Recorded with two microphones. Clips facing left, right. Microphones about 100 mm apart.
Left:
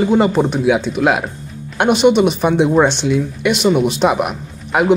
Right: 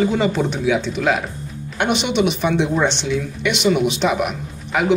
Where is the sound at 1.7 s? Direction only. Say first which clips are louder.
Left 7 dB; 45° left (ahead or behind).